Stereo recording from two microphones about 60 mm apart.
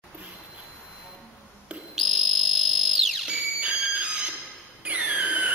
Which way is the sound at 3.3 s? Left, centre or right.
Right.